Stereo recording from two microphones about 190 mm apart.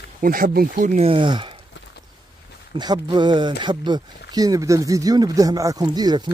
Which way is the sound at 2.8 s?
25° right (ahead or behind).